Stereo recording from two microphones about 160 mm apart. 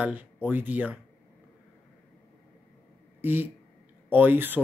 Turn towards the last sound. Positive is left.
turn(degrees=-10)  # may be behind; listen again after turning